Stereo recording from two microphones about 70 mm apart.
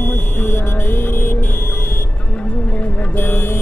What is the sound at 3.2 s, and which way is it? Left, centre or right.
Music, left.